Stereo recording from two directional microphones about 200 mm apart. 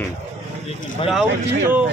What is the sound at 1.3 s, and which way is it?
Speech, 60° right (ahead or behind).